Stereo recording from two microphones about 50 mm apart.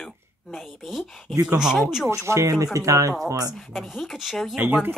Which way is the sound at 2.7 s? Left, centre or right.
Right.